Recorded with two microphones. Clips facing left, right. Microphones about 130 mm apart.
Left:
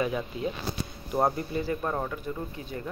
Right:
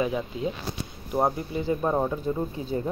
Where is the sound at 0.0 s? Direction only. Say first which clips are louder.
Right 2 dB; 15° right (ahead or behind).